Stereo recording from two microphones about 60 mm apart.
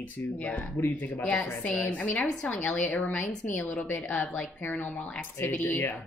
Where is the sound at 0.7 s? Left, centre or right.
Left.